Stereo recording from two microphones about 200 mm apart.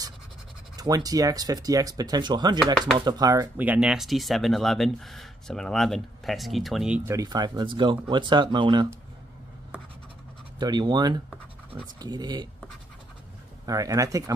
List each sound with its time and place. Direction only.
0.7 s speech: 20° right (ahead or behind); by 7.0 s centre (ahead or behind)
7.1 s speech: 20° right (ahead or behind)
10.6 s speech: 20° right (ahead or behind)
13.7 s speech: 20° right (ahead or behind)